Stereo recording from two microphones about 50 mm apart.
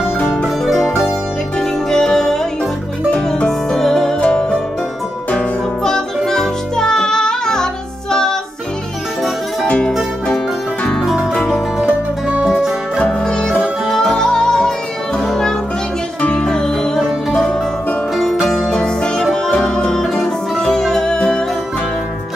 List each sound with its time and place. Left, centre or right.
0.7 s music: centre
1.6 s music: centre
3.4 s music: centre
4.2 s music: left
5.9 s music: centre
9.7 s music: left
11.0 s music: centre
12.4 s music: centre
13.2 s music: centre
18.1 s music: centre
18.7 s music: centre